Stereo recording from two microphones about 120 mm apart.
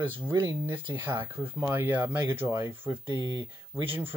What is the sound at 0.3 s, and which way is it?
Speech, 35° right (ahead or behind).